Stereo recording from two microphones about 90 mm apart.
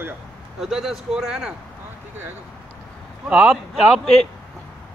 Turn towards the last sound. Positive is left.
turn(degrees=-5)  # may be behind; listen again after turning